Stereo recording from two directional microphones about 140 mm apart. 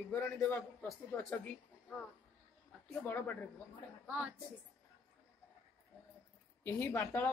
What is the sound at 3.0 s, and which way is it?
Speech, 10° left (ahead or behind).